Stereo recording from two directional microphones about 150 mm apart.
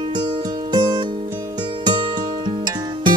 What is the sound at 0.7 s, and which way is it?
Music, 30° right (ahead or behind).